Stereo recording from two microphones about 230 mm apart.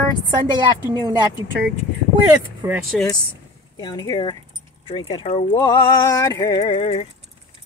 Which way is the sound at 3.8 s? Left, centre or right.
Centre.